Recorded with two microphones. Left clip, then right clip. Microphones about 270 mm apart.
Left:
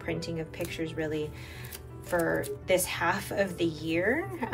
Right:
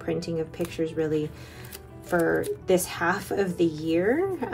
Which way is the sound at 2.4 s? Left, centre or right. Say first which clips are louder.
Right 3 dB; centre.